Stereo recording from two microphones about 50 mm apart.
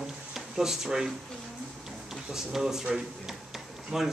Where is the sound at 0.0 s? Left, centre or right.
Centre.